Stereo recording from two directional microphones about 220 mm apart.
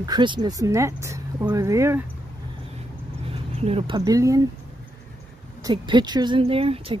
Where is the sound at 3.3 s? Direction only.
25° right (ahead or behind).